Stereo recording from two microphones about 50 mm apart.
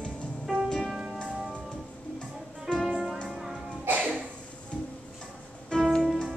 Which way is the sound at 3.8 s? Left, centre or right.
Right.